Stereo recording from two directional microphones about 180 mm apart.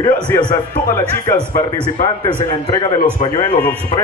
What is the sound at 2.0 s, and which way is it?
Speech, 25° left (ahead or behind).